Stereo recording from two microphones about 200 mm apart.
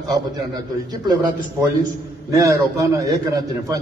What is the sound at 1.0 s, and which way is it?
A man's voice, 20° right (ahead or behind).